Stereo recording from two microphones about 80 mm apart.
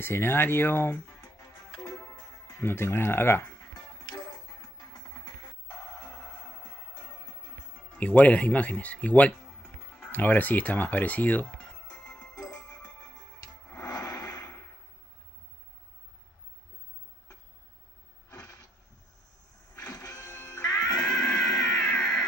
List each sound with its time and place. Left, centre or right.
0.0 s speech: left
1.0 s music: left
2.6 s speech: left
4.0 s music: left
7.9 s speech: centre
9.6 s music: left
10.1 s speech: left
12.0 s music: centre
13.1 s music: left
13.7 s radio: left
20.9 s cat: centre
21.5 s a sound: centre